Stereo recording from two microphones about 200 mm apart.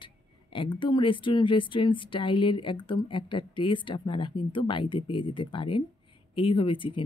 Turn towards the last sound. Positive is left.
turn(degrees=25)  # may be behind; listen again after turning